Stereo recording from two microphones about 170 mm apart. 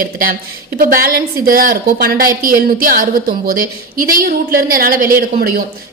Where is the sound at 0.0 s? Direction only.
55° right (ahead or behind).